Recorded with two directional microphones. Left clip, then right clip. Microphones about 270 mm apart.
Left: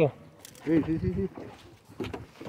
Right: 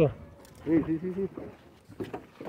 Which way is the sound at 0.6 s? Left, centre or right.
Left.